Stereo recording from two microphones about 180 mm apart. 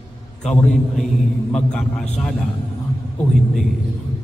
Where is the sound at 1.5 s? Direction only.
5° left (ahead or behind).